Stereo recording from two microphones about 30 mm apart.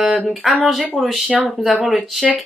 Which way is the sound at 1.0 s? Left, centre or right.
Left.